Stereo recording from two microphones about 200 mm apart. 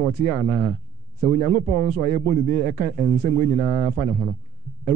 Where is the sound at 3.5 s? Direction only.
15° right (ahead or behind).